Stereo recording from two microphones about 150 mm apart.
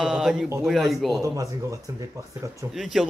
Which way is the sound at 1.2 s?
20° right (ahead or behind).